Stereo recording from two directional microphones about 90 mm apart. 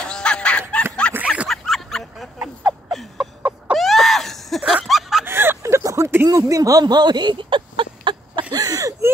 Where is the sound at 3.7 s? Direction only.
Centre (ahead or behind).